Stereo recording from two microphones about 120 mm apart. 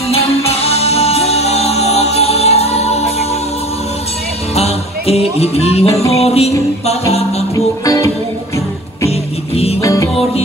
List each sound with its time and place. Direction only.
0.5 s music: 55° left (ahead or behind)
4.6 s music: 60° left (ahead or behind)
7.5 s music: 30° left (ahead or behind)
9.8 s music: 25° left (ahead or behind)